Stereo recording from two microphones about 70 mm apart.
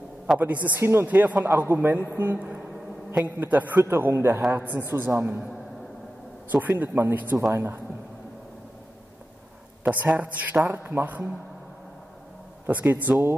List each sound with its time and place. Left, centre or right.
0.4 s a man's voice: right
3.8 s a woman's voice: right
6.5 s a man's voice: right
9.8 s a man's voice: right
12.6 s a man's voice: right